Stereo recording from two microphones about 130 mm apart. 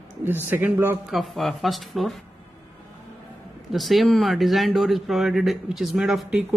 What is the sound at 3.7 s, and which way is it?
Speech, centre (ahead or behind).